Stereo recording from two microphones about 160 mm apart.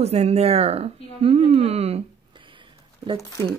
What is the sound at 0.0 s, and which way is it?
Speech, 40° right (ahead or behind).